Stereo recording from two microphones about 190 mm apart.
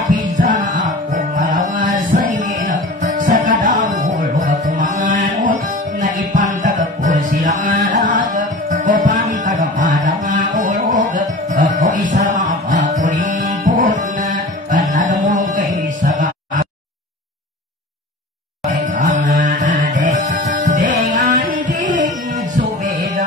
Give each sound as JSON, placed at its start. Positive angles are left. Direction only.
{"t": 0.1, "sound": "music", "side_deg": -45}
{"t": 15.0, "sound": "a sound", "side_deg": -45}
{"t": 18.9, "sound": "mantra", "side_deg": -40}
{"t": 19.8, "sound": "music", "side_deg": -45}